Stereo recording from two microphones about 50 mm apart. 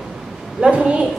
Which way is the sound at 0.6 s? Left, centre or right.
Centre.